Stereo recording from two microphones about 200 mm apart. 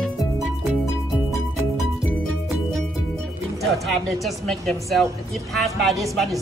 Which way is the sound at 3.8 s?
Centre (ahead or behind).